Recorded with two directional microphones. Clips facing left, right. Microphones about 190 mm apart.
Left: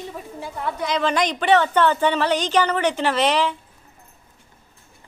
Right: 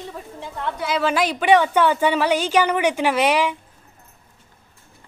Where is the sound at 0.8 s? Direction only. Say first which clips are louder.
Right 1 dB; 5° right (ahead or behind).